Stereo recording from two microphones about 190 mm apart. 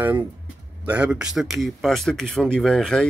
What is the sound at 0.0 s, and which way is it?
Speech, 10° right (ahead or behind).